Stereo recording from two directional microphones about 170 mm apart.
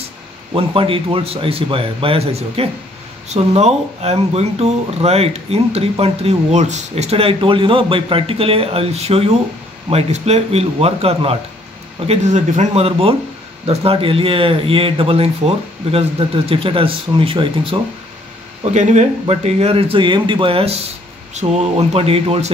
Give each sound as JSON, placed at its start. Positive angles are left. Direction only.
{"t": 0.5, "sound": "speech", "side_deg": -30}
{"t": 18.6, "sound": "speech", "side_deg": -45}